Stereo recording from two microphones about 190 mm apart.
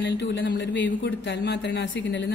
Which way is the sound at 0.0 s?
65° left (ahead or behind).